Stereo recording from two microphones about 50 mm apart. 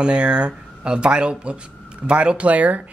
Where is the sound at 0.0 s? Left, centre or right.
Right.